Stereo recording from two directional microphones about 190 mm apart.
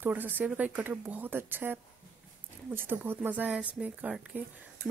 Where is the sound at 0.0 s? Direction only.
10° right (ahead or behind).